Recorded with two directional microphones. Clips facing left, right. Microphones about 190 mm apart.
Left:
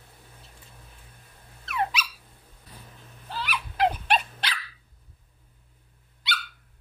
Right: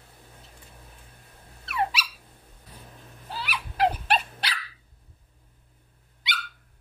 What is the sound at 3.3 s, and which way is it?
Dog, 10° right (ahead or behind).